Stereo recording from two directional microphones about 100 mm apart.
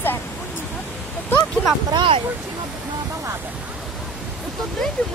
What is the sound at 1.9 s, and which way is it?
Speech, 55° right (ahead or behind).